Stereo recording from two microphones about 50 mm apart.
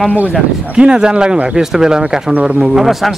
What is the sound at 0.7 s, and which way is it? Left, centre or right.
A man's voice, centre.